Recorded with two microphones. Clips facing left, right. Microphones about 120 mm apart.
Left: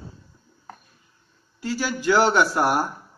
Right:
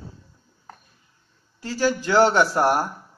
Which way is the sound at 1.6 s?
35° right (ahead or behind).